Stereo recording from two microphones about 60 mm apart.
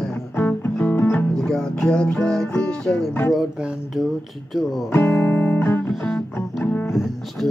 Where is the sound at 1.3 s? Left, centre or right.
Centre.